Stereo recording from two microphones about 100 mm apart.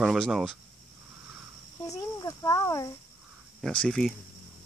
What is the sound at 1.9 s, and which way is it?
Speech, 35° left (ahead or behind).